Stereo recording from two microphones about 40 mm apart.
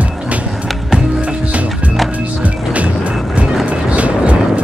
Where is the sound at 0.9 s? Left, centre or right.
Right.